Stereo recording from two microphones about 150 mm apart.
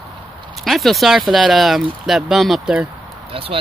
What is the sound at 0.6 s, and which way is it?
Speech, centre (ahead or behind).